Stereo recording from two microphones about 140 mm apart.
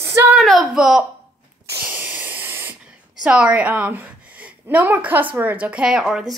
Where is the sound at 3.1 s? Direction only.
5° right (ahead or behind).